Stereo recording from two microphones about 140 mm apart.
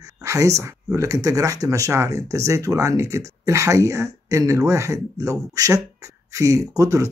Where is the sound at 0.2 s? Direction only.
20° right (ahead or behind).